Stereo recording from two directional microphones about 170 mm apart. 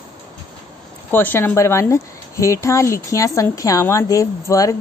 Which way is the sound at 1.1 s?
10° left (ahead or behind).